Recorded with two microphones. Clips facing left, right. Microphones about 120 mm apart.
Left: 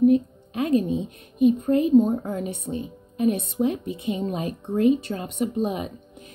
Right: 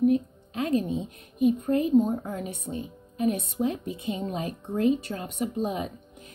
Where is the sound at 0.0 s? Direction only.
20° left (ahead or behind).